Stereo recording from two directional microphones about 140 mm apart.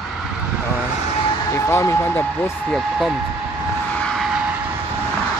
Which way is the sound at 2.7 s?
Centre (ahead or behind).